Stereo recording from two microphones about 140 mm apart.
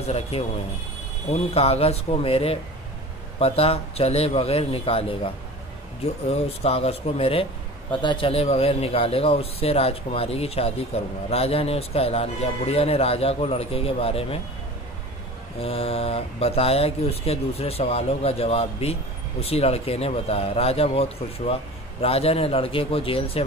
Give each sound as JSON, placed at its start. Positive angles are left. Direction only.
{"t": 0.0, "sound": "speech", "side_deg": 50}
{"t": 15.6, "sound": "speech", "side_deg": 45}